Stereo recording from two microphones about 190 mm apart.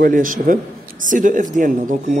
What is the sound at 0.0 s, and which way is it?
A woman's voice, 45° right (ahead or behind).